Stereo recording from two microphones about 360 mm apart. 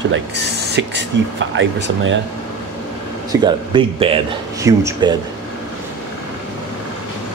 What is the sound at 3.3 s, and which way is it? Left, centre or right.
Speech, centre.